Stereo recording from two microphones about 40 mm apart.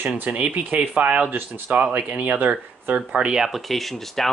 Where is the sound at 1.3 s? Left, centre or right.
Right.